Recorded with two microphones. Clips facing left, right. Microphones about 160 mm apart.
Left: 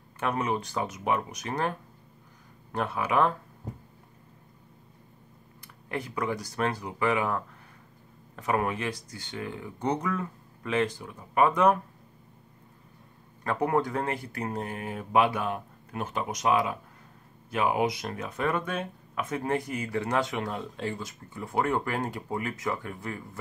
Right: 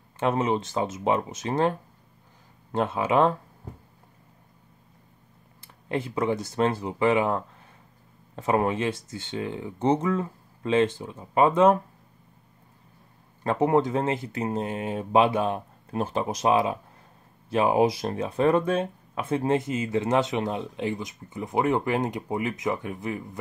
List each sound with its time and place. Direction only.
0.2 s speech: 25° right (ahead or behind)
5.9 s speech: 25° right (ahead or behind)
13.4 s speech: 25° right (ahead or behind)